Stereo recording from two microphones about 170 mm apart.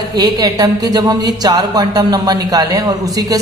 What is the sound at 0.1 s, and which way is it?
A woman's voice, 25° right (ahead or behind).